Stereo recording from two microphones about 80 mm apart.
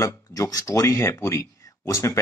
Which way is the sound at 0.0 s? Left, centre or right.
Left.